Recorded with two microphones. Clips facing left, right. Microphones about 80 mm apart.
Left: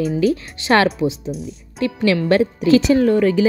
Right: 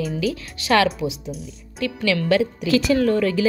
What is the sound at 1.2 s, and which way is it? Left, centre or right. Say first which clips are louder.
Speech: left 6 dB; centre.